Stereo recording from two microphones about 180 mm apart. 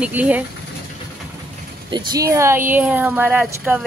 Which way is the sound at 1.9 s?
25° right (ahead or behind).